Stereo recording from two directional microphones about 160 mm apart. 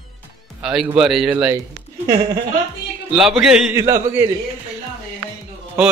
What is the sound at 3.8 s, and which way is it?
Speech, 20° right (ahead or behind).